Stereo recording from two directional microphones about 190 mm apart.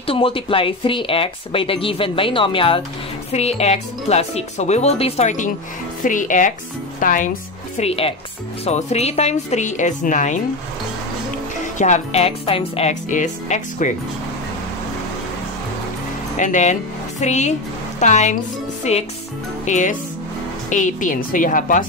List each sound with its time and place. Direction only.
0.0 s a woman's voice: 30° left (ahead or behind); by 7.2 s 45° left (ahead or behind)
7.7 s speech: 30° left (ahead or behind)
11.8 s speech: 35° left (ahead or behind)
16.3 s a woman's voice: 40° left (ahead or behind)